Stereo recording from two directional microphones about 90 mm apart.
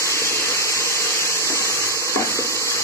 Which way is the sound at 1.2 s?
35° right (ahead or behind).